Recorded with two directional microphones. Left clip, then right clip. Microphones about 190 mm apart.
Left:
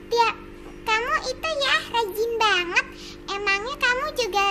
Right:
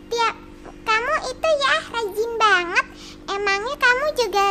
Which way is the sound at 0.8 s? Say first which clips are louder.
Right 2 dB; 35° right (ahead or behind).